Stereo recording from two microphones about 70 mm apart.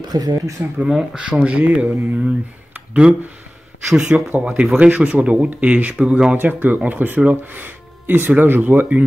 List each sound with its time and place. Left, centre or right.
0.0 s speech: right
0.7 s speech: centre
4.3 s speech: centre
6.3 s speech: right